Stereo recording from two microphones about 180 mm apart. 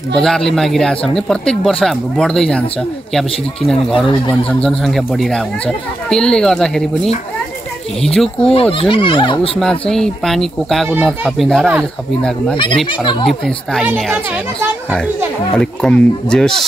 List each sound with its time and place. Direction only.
0.1 s speech: centre (ahead or behind)
8.0 s speech: 5° left (ahead or behind)
8.7 s speech: 30° left (ahead or behind)
9.6 s speech: centre (ahead or behind)
15.5 s speech: 5° left (ahead or behind)